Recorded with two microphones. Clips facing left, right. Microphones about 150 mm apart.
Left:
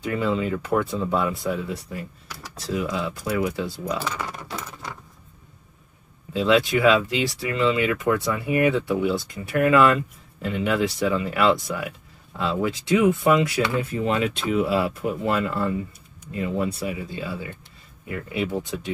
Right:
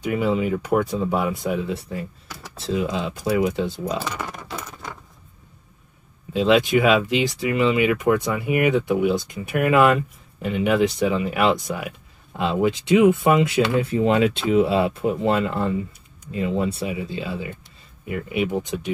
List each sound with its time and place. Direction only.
0.0 s speech: 15° right (ahead or behind)
6.3 s speech: 20° right (ahead or behind)